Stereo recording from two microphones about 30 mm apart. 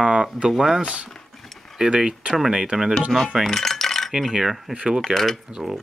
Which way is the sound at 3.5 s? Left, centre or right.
Centre.